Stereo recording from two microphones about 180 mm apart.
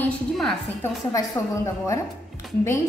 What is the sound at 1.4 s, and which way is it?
Speech, 15° left (ahead or behind).